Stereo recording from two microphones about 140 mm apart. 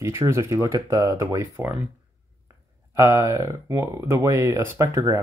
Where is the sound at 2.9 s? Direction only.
20° right (ahead or behind).